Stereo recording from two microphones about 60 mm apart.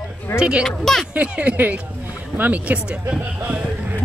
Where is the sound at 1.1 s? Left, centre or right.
Right.